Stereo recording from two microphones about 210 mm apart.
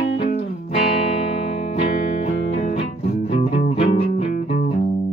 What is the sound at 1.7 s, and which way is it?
Music, 30° left (ahead or behind).